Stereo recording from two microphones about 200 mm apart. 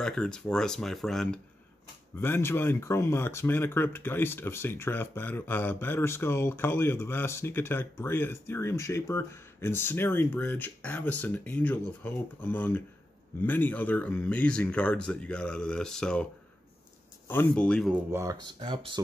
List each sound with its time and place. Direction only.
0.0 s speech: 5° left (ahead or behind)
17.3 s speech: 10° left (ahead or behind)
18.1 s speech: 15° right (ahead or behind)